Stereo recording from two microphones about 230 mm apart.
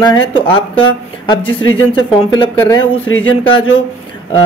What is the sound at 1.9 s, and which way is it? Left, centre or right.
Speech, left.